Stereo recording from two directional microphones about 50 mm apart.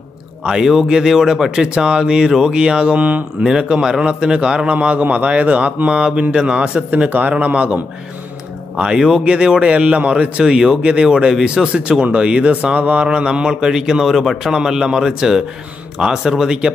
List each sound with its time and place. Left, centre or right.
0.4 s a man's voice: centre
3.4 s a man's voice: centre
7.1 s a man's voice: right
8.7 s a man's voice: centre
13.0 s speech: centre
14.1 s a man's voice: centre
14.5 s speech: centre